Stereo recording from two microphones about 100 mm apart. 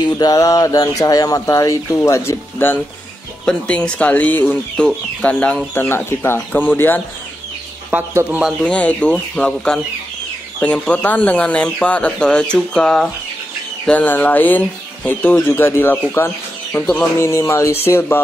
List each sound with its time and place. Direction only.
0.0 s a sound: 40° left (ahead or behind)
2.0 s speech: 30° left (ahead or behind)
3.4 s speech: 10° left (ahead or behind)
5.8 s speech: 20° left (ahead or behind)
8.1 s speech: 25° right (ahead or behind)
8.5 s speech: 10° left (ahead or behind)
16.7 s speech: 10° left (ahead or behind)
17.2 s speech: 25° left (ahead or behind)